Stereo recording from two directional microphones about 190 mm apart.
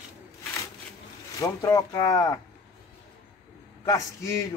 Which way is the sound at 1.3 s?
15° left (ahead or behind).